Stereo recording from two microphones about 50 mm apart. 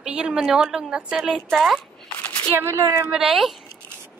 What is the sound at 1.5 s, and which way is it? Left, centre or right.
Speech, centre.